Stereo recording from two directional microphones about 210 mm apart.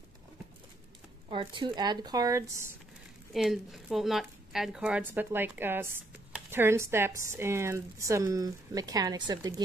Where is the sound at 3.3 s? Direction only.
Centre (ahead or behind).